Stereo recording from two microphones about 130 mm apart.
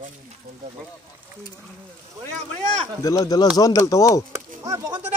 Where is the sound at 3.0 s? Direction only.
25° left (ahead or behind).